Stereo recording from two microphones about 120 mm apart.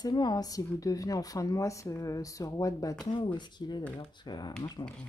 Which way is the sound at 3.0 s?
40° left (ahead or behind).